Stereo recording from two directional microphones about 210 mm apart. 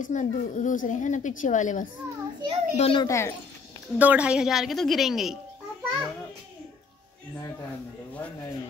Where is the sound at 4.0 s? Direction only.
5° right (ahead or behind).